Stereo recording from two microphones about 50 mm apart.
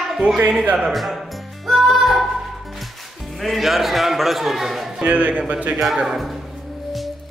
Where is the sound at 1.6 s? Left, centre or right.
Centre.